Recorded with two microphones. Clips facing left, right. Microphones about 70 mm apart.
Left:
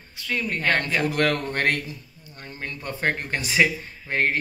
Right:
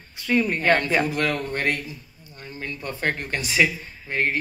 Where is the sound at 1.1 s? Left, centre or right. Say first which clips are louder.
Left 2 dB; left.